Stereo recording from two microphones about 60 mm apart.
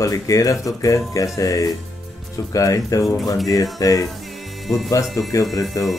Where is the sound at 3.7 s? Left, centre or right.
Left.